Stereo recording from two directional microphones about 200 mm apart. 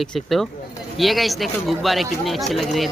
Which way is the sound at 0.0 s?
Centre (ahead or behind).